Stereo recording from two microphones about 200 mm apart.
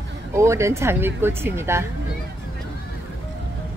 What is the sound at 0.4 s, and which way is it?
Speech, 15° right (ahead or behind).